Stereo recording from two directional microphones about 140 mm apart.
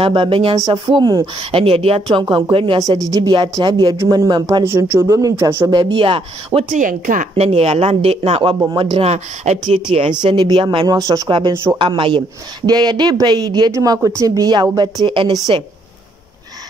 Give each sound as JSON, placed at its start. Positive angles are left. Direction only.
{"t": 0.0, "sound": "speech", "side_deg": -40}
{"t": 2.8, "sound": "speech", "side_deg": -25}
{"t": 5.7, "sound": "speech", "side_deg": -35}
{"t": 6.7, "sound": "speech", "side_deg": -70}
{"t": 7.3, "sound": "speech", "side_deg": -45}
{"t": 9.1, "sound": "speech", "side_deg": -50}
{"t": 10.2, "sound": "speech", "side_deg": -30}
{"t": 11.0, "sound": "speech", "side_deg": -25}
{"t": 11.5, "sound": "speech", "side_deg": -15}
{"t": 11.8, "sound": "speech", "side_deg": -35}